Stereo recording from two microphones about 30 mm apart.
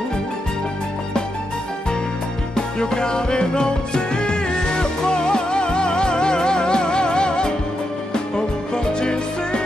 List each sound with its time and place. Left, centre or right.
2.5 s music: left